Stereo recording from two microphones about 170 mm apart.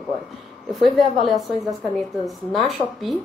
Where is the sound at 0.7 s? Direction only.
Centre (ahead or behind).